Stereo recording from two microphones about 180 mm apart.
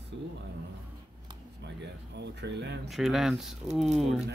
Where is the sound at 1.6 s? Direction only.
70° right (ahead or behind).